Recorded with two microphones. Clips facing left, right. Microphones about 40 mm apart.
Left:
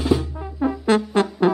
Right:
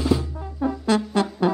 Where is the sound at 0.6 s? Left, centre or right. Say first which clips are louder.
Left 3 dB; left.